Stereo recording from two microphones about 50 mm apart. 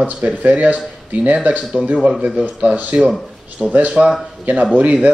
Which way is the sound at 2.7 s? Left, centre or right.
Right.